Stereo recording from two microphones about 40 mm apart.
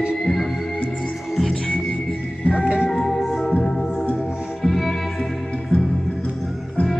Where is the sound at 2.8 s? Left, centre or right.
Centre.